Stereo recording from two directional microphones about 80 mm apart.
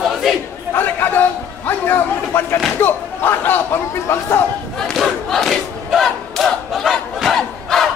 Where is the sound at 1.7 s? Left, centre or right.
Left.